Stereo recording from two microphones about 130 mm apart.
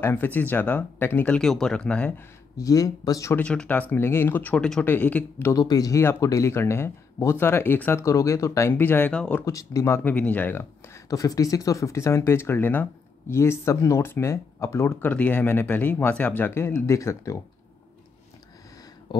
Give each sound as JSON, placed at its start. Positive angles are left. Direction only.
{"t": 0.0, "sound": "speech", "side_deg": 15}
{"t": 2.5, "sound": "speech", "side_deg": 30}
{"t": 3.3, "sound": "speech", "side_deg": 10}
{"t": 5.5, "sound": "speech", "side_deg": 30}
{"t": 9.4, "sound": "speech", "side_deg": 25}